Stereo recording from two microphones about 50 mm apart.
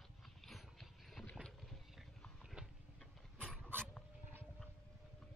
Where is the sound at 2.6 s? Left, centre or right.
Centre.